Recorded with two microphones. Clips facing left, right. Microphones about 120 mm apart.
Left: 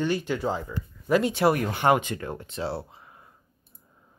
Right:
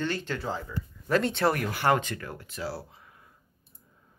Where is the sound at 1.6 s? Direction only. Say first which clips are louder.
Left 3 dB; 20° left (ahead or behind).